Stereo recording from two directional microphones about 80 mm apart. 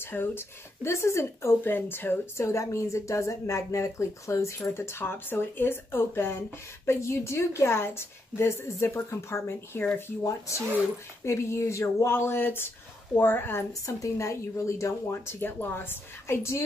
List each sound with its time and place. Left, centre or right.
0.0 s speech: left
11.2 s speech: left
13.8 s speech: left